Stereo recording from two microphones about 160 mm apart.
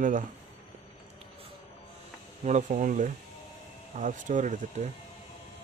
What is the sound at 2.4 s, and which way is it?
Speech, 50° right (ahead or behind).